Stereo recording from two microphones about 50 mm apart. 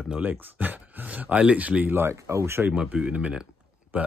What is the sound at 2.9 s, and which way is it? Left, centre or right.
Speech, right.